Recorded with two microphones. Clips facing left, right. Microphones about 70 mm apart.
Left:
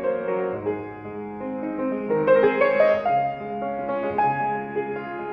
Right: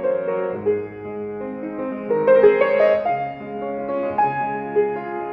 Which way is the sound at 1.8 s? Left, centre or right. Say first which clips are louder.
Right 3 dB; centre.